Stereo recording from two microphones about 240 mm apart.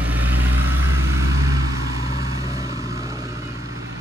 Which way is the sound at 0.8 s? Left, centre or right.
Right.